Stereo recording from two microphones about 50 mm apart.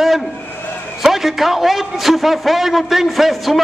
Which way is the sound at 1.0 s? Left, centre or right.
Centre.